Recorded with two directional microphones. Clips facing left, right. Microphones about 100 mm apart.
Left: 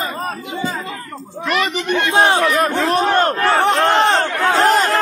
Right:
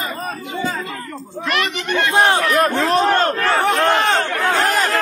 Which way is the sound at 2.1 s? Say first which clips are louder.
Left 1 dB; 20° left (ahead or behind).